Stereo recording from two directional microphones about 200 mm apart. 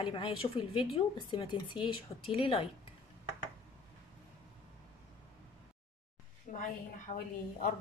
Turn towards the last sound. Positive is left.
turn(degrees=40)  # may be behind; listen again after turning